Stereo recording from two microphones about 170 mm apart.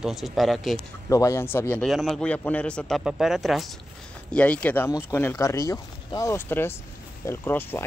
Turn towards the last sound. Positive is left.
turn(degrees=10)  # may be behind; listen again after turning